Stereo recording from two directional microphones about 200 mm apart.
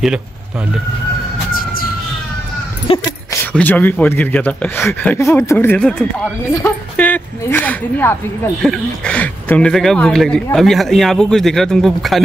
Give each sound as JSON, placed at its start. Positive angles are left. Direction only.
{"t": 1.5, "sound": "emergency vehicle", "side_deg": 45}
{"t": 2.9, "sound": "speech", "side_deg": 30}
{"t": 3.5, "sound": "speech", "side_deg": 10}